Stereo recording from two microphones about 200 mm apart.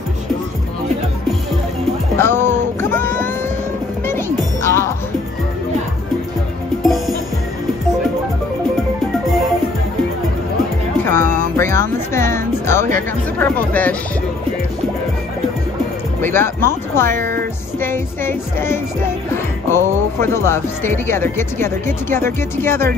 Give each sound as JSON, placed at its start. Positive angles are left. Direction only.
{"t": 2.1, "sound": "music", "side_deg": 10}
{"t": 4.6, "sound": "music", "side_deg": 15}
{"t": 6.8, "sound": "music", "side_deg": 0}
{"t": 11.1, "sound": "music", "side_deg": 10}
{"t": 12.9, "sound": "speech", "side_deg": 10}
{"t": 16.2, "sound": "speech", "side_deg": 10}
{"t": 17.1, "sound": "speech", "side_deg": -45}
{"t": 17.7, "sound": "speech", "side_deg": 10}